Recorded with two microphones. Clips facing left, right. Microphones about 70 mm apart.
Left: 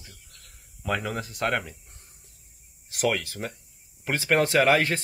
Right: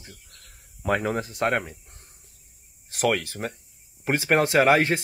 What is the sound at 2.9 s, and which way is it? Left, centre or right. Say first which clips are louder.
Speech: right 2 dB; right.